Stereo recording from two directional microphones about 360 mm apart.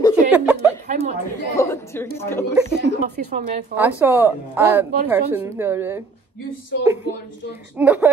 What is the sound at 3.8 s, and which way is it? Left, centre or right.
Speech, centre.